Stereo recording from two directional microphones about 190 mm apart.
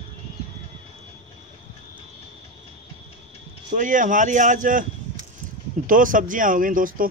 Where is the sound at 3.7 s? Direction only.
45° right (ahead or behind).